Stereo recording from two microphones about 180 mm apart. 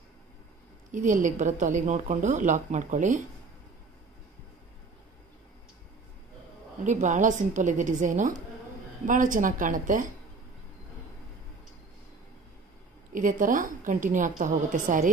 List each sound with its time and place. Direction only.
0.9 s speech: 45° right (ahead or behind)
6.8 s speech: 45° right (ahead or behind)
13.1 s speech: 45° right (ahead or behind)